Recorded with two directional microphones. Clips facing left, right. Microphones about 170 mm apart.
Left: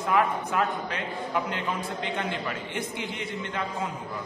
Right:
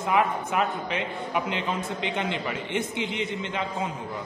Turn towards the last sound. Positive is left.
turn(degrees=-20)  # may be behind; listen again after turning